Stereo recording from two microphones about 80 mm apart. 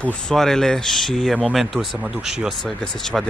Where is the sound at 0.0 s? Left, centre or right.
Centre.